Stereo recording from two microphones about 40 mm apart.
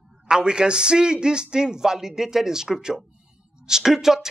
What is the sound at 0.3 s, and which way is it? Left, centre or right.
Speech, right.